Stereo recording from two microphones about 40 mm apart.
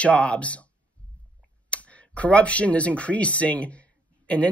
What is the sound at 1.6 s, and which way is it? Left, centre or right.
Speech, left.